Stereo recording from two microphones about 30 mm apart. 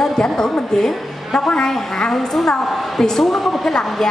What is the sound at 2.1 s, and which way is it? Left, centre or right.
Speech, centre.